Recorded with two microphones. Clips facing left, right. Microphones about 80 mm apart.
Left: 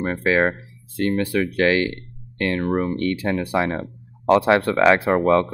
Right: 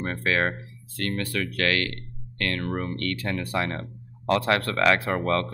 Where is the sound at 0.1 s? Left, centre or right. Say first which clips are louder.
Left 6 dB; centre.